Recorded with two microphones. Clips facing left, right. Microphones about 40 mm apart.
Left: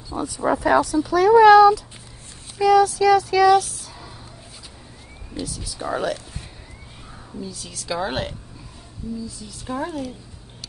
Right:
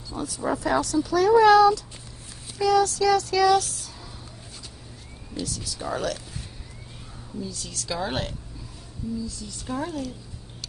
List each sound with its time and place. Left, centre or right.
0.1 s speech: centre
0.7 s speech: centre
5.3 s speech: centre
7.3 s speech: centre